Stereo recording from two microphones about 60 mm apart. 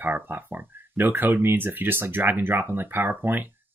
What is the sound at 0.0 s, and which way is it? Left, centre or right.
Speech, right.